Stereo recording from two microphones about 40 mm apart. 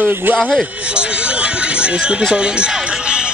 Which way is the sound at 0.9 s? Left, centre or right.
Right.